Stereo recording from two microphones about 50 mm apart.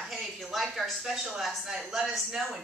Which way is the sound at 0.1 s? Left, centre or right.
Centre.